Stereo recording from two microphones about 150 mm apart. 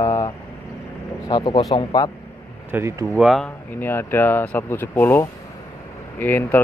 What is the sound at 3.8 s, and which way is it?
Speech, 15° left (ahead or behind).